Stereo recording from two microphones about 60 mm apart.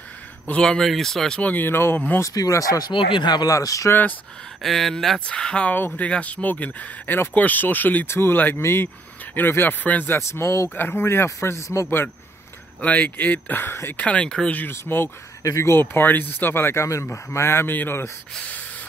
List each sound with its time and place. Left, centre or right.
0.5 s speech: centre
1.4 s speech: left
2.1 s speech: left
4.6 s speech: centre
5.2 s speech: centre
8.1 s speech: left
11.4 s speech: left
12.8 s speech: left
13.9 s speech: centre
14.7 s speech: left
15.4 s speech: left
15.8 s speech: left
16.8 s speech: left